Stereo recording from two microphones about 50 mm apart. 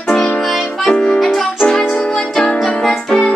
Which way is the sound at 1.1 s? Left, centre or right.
Centre.